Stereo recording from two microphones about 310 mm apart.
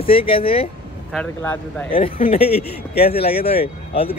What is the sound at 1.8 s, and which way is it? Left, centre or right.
Speech, centre.